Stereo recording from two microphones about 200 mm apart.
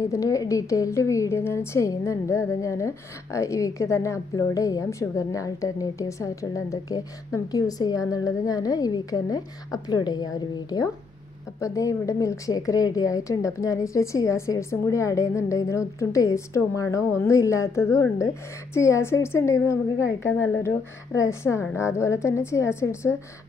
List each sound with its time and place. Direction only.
0.1 s a woman's voice: 15° left (ahead or behind)